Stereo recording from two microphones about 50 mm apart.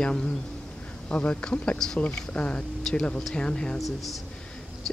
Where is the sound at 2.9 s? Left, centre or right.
Centre.